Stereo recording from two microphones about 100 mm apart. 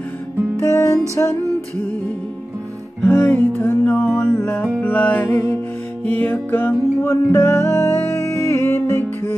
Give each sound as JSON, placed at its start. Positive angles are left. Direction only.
{"t": 0.6, "sound": "music", "side_deg": 30}
{"t": 3.0, "sound": "music", "side_deg": 20}